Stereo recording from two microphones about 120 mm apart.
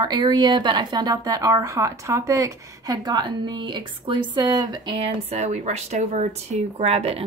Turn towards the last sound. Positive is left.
turn(degrees=-60)  # may be behind; listen again after turning